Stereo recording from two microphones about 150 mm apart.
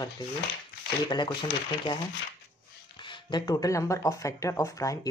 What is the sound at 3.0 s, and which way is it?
Speech, 30° left (ahead or behind).